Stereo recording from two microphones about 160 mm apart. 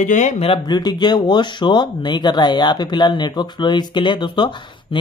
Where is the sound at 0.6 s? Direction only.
25° left (ahead or behind).